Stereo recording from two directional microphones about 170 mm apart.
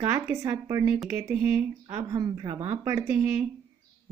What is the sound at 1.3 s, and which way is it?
Speech, 10° right (ahead or behind).